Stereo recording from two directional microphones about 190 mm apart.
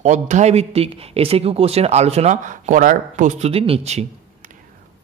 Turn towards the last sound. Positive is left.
turn(degrees=-35)  # may be behind; listen again after turning